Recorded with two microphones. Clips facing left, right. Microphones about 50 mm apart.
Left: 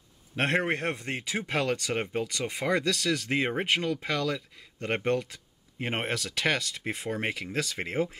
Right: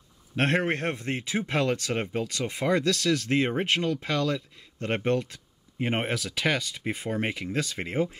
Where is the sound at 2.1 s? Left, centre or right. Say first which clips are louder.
Right 1 dB; centre.